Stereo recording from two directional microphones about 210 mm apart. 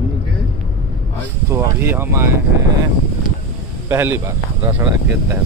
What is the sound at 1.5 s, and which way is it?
Speech, 10° right (ahead or behind).